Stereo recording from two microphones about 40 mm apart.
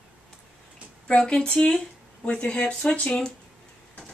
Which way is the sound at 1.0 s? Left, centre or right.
Left.